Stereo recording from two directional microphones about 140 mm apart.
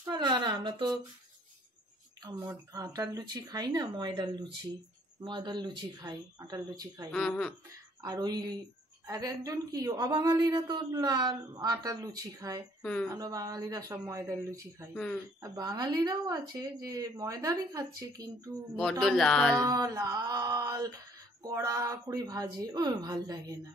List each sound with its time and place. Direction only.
0.1 s speech: 30° right (ahead or behind)
2.2 s a woman's voice: 25° right (ahead or behind)
7.1 s speech: 5° left (ahead or behind)
8.0 s a woman's voice: 30° right (ahead or behind)
12.8 s speech: 10° left (ahead or behind)
13.1 s a woman's voice: 25° right (ahead or behind)
18.8 s speech: 5° left (ahead or behind)
19.5 s a woman's voice: 25° right (ahead or behind)